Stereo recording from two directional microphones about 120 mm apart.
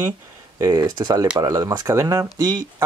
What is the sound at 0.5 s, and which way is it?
Speech, 30° right (ahead or behind).